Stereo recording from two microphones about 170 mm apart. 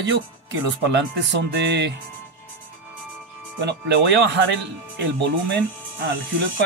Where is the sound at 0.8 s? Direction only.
90° right.